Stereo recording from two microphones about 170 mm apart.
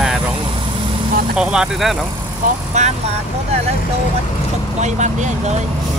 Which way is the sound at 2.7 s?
45° right (ahead or behind).